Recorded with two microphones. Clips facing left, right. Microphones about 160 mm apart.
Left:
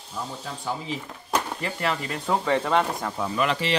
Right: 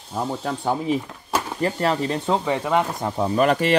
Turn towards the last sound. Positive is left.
turn(degrees=-50)  # may be behind; listen again after turning